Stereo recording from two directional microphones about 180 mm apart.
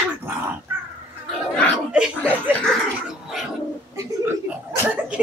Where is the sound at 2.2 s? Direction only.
5° left (ahead or behind).